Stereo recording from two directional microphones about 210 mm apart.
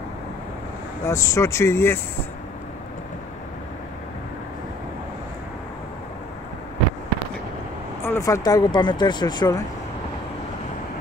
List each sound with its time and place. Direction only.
1.0 s speech: 15° left (ahead or behind)
8.0 s speech: 10° left (ahead or behind)